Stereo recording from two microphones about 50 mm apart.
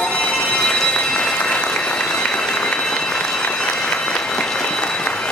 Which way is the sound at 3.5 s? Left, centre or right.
Centre.